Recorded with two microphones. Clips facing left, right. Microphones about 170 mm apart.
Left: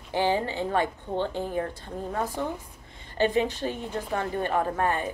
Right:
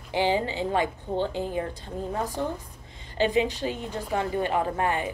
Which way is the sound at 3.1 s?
15° right (ahead or behind).